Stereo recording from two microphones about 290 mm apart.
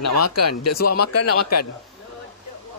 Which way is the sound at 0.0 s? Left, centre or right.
Left.